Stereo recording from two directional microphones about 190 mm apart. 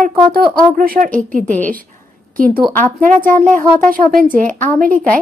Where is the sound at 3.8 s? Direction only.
45° right (ahead or behind).